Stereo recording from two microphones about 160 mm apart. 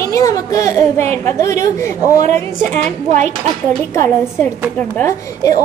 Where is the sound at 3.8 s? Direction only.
15° left (ahead or behind).